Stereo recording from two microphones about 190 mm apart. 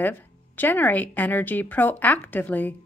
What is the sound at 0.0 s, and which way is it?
Speech, 10° left (ahead or behind).